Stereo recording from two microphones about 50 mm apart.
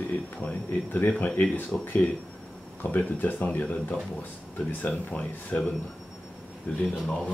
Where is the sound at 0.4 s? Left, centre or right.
Left.